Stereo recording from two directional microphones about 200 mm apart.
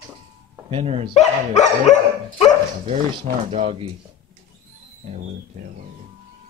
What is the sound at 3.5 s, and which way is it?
Speech, 30° right (ahead or behind).